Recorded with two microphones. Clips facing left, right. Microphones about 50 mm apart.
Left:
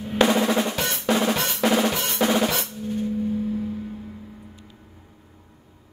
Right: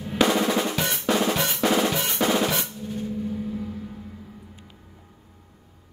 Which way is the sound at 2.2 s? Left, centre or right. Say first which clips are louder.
Left 2 dB; centre.